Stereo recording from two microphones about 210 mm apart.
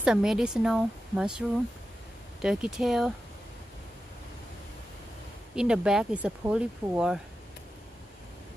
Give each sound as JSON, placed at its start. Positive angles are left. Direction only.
{"t": 0.0, "sound": "speech", "side_deg": -5}
{"t": 2.4, "sound": "speech", "side_deg": 0}
{"t": 5.6, "sound": "speech", "side_deg": -5}